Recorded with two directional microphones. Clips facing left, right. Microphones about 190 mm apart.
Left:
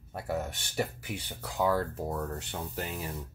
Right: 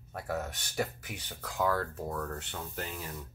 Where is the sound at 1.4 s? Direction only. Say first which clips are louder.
Left 2 dB; 10° left (ahead or behind).